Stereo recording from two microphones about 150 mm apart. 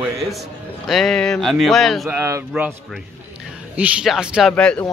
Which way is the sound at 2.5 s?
5° right (ahead or behind).